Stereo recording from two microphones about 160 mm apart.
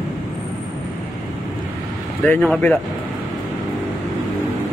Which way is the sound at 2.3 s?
10° left (ahead or behind).